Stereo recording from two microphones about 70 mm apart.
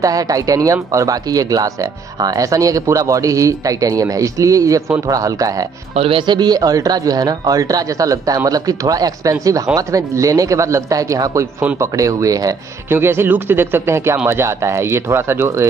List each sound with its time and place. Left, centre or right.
0.0 s speech: right
6.2 s speech: right
12.9 s a man's voice: right